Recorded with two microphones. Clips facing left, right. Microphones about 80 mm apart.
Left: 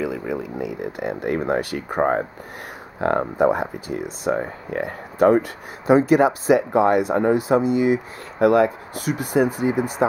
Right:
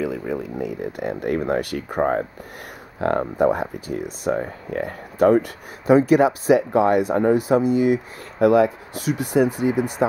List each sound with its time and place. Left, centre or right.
0.0 s speech: centre
2.0 s speech: centre
3.0 s speech: centre